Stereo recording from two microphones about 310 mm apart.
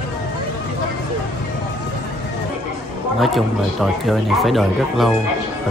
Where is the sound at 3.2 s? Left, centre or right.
Centre.